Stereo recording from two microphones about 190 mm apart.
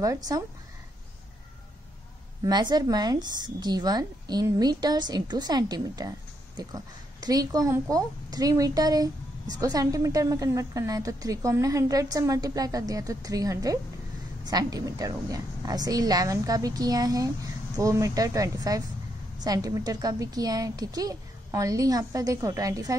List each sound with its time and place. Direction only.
0.0 s speech: 15° right (ahead or behind)
2.4 s a woman's voice: 20° right (ahead or behind)